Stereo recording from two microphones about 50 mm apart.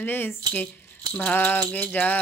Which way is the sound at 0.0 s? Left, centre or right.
Left.